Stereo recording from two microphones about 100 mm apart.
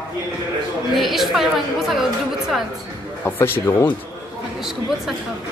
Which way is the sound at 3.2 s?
20° left (ahead or behind).